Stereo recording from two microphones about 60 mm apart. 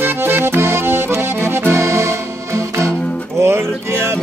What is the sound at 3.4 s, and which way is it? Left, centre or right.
Music, right.